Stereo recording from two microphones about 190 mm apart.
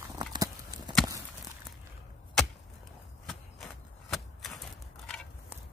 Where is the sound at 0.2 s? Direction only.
25° right (ahead or behind).